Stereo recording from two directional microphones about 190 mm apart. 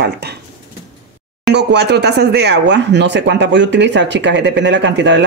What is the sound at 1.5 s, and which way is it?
Speech, 65° right (ahead or behind).